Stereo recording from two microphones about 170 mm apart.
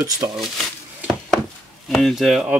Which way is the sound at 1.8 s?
Centre (ahead or behind).